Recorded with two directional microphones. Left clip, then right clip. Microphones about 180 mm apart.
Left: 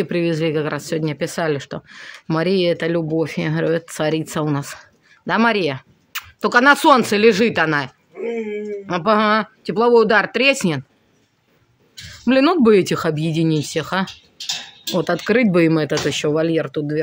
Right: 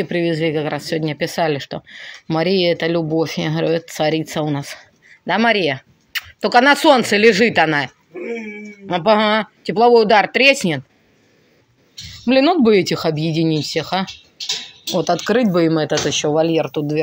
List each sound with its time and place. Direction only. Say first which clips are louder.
0.0 s speech: right 1 dB; 20° left (ahead or behind)
12.3 s speech: right 1 dB; 20° left (ahead or behind)